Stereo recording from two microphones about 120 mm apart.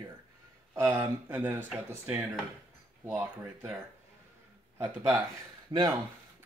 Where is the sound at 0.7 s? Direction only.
20° right (ahead or behind).